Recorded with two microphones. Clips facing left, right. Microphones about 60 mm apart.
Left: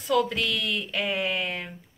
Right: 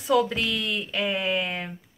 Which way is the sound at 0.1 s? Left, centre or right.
Centre.